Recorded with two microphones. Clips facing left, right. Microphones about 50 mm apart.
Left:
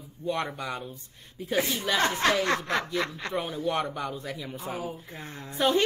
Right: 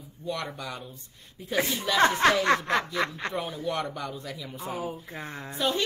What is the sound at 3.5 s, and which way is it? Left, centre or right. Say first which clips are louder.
Speech: left 2 dB; left.